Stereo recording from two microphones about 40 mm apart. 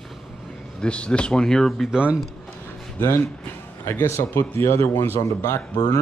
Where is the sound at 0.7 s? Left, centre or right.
Left.